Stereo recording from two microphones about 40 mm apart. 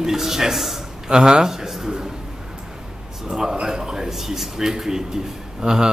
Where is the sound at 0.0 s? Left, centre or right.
Centre.